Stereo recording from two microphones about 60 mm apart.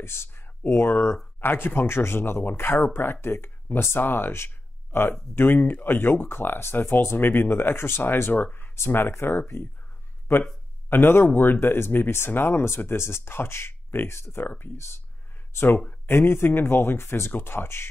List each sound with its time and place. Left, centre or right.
0.0 s speech: left
8.7 s speech: left